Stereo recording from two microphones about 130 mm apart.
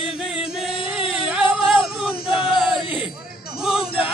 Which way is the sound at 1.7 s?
Centre (ahead or behind).